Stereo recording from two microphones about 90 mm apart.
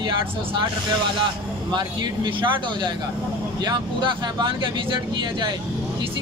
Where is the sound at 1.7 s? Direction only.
55° right (ahead or behind).